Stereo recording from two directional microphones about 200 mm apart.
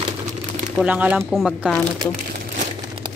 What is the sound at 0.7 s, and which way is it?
Speech, 5° right (ahead or behind).